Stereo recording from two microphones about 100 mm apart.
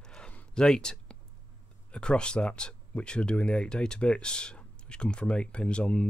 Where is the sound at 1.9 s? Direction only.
10° left (ahead or behind).